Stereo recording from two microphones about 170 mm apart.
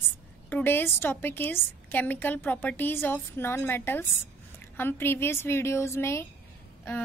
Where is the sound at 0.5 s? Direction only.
10° left (ahead or behind).